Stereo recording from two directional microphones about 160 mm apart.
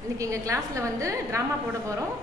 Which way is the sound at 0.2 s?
20° right (ahead or behind).